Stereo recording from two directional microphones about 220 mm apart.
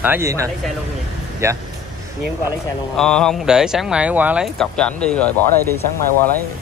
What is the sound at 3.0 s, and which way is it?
Speech, 5° left (ahead or behind).